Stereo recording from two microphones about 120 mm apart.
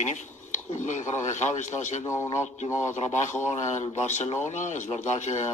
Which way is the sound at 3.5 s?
75° left (ahead or behind).